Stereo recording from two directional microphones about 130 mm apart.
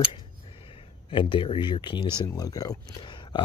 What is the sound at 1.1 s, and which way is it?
Speech, 40° left (ahead or behind).